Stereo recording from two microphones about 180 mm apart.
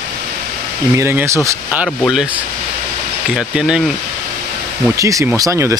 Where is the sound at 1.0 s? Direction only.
15° right (ahead or behind).